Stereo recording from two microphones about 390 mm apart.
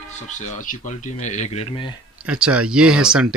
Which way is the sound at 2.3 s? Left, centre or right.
Centre.